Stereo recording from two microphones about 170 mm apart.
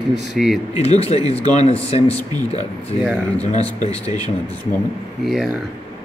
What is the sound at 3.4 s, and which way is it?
Speech, 40° left (ahead or behind).